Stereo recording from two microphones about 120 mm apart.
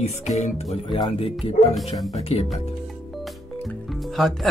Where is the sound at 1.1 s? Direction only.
55° left (ahead or behind).